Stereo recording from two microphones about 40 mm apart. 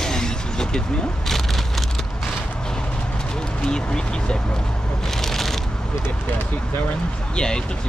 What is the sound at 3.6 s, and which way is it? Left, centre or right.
Speech, centre.